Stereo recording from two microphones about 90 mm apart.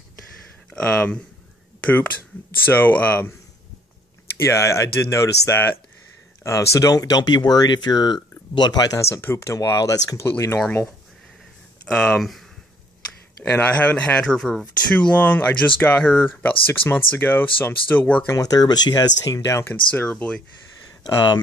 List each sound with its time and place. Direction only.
0.7 s speech: 10° left (ahead or behind)
4.5 s speech: 30° left (ahead or behind)
9.1 s speech: 30° left (ahead or behind)
11.8 s speech: 10° left (ahead or behind)
12.2 s speech: centre (ahead or behind)
13.4 s speech: 15° left (ahead or behind)
15.0 s speech: 15° left (ahead or behind)
18.3 s speech: 45° left (ahead or behind)
19.7 s speech: 20° left (ahead or behind)
21.0 s speech: 55° left (ahead or behind)